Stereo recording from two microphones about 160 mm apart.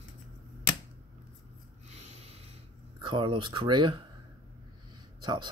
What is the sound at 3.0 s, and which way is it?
Speech, 30° right (ahead or behind).